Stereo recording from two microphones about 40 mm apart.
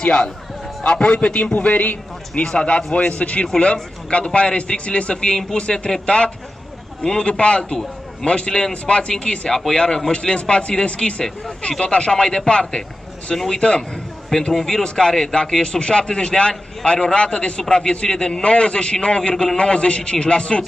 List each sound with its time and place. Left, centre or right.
0.0 s a man's voice: left
1.3 s a man's voice: left
2.4 s a man's voice: left
5.1 s a man's voice: centre
7.0 s a man's voice: centre
7.2 s a man's voice: left
14.5 s a man's voice: centre